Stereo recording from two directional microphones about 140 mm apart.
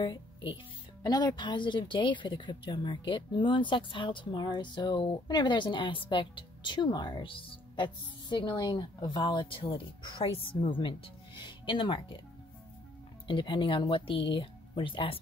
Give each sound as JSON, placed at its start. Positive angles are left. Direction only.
{"t": 0.0, "sound": "speech", "side_deg": 35}
{"t": 13.3, "sound": "speech", "side_deg": 35}